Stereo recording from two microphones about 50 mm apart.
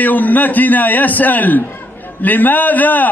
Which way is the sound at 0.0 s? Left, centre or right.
Left.